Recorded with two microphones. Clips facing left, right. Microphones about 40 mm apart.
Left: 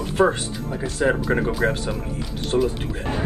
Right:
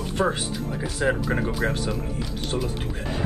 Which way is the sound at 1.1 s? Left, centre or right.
Centre.